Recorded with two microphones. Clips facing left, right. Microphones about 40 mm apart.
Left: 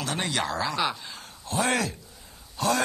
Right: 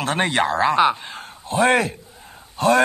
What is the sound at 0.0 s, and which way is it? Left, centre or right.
A man's voice, right.